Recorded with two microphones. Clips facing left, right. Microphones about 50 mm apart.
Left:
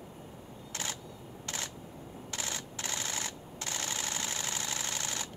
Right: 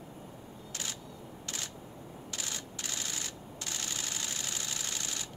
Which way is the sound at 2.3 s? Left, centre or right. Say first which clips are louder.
Left 3 dB; left.